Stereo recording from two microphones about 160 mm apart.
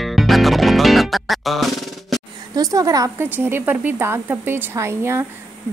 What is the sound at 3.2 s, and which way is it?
A woman's voice, 15° right (ahead or behind).